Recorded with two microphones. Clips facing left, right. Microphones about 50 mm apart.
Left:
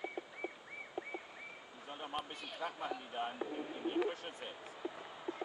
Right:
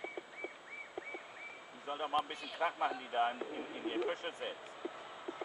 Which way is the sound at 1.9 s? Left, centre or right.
Right.